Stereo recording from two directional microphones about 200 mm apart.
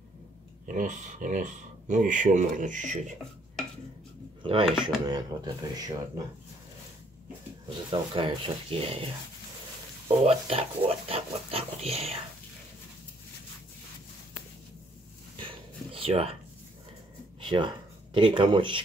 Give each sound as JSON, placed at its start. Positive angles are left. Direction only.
{"t": 0.7, "sound": "speech", "side_deg": -40}
{"t": 4.4, "sound": "speech", "side_deg": -25}
{"t": 7.9, "sound": "speech", "side_deg": -25}
{"t": 10.2, "sound": "a sound", "side_deg": -30}
{"t": 15.3, "sound": "a sound", "side_deg": -25}
{"t": 17.4, "sound": "speech", "side_deg": -25}